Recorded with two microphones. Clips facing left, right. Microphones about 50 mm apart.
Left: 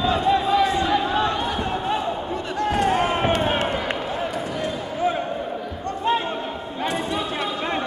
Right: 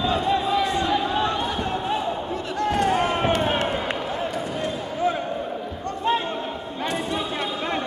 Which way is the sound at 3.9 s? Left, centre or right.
Centre.